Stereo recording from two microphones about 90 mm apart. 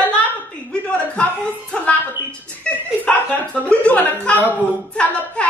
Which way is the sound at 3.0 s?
15° left (ahead or behind).